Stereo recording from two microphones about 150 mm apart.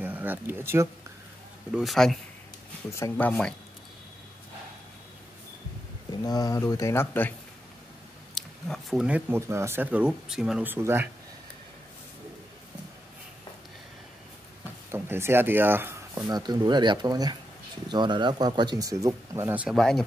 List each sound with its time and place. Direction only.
0.0 s speech: 10° right (ahead or behind)
1.7 s a man's voice: centre (ahead or behind)
2.9 s speech: 15° left (ahead or behind)
6.2 s speech: 25° left (ahead or behind)
8.4 s a sound: 5° left (ahead or behind)
9.0 s speech: 10° right (ahead or behind)
14.9 s speech: 15° right (ahead or behind)
16.2 s speech: 25° right (ahead or behind); by 20.1 s 5° left (ahead or behind)